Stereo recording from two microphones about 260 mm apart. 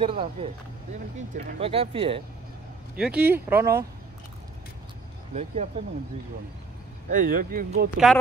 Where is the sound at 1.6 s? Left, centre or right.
Right.